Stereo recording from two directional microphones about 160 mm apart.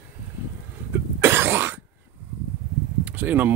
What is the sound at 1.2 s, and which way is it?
Cough, 15° right (ahead or behind).